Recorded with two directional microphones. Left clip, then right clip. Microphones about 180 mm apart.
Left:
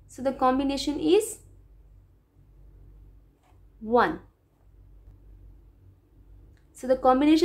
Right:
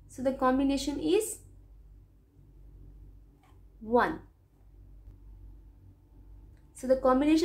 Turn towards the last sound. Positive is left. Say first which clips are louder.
# left 4 dB
turn(degrees=30)  # may be behind; listen again after turning